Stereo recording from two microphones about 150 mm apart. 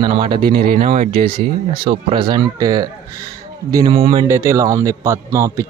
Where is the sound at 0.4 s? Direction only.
85° right.